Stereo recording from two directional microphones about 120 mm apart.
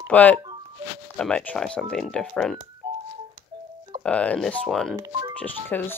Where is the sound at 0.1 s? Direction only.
10° left (ahead or behind).